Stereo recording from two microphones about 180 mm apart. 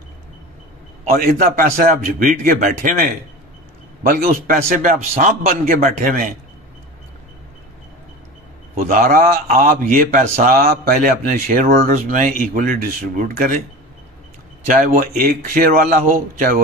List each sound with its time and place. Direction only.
1.2 s speech: 50° right (ahead or behind)
8.7 s speech: 50° right (ahead or behind)
14.7 s speech: 50° right (ahead or behind)